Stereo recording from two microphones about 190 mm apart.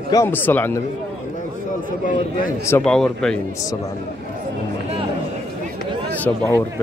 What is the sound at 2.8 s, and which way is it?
Speech, 5° left (ahead or behind).